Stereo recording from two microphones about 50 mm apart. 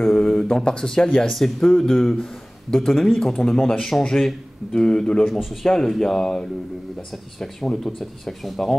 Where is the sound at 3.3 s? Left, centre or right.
Centre.